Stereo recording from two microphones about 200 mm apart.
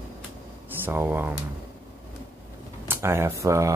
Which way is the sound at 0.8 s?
10° right (ahead or behind).